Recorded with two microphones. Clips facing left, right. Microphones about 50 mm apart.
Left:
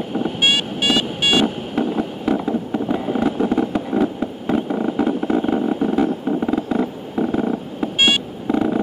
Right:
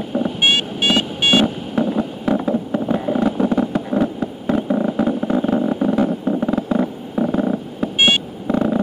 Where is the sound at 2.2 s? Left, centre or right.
Centre.